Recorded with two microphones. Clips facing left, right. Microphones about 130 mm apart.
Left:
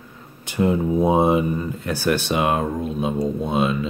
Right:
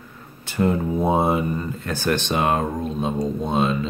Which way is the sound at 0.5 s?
15° left (ahead or behind).